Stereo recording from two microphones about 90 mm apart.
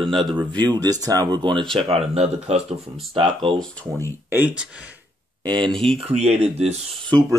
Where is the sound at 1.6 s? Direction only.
5° left (ahead or behind).